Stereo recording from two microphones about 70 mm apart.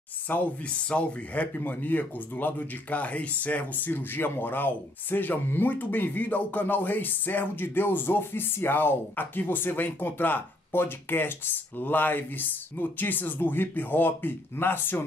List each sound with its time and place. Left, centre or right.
0.3 s speech: centre